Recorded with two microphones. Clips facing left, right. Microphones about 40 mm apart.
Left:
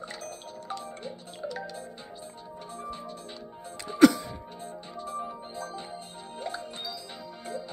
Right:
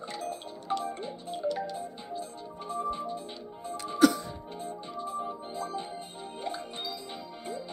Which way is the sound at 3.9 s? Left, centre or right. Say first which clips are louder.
Left 4 dB; left.